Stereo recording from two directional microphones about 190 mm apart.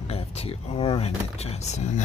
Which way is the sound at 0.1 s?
30° left (ahead or behind).